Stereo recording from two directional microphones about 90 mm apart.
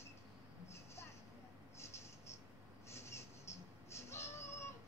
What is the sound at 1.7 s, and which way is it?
Writing, 30° left (ahead or behind).